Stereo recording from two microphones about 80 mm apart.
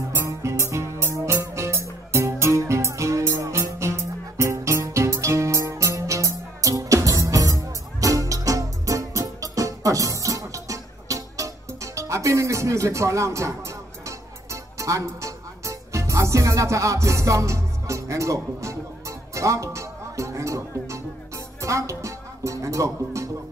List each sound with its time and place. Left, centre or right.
0.3 s music: right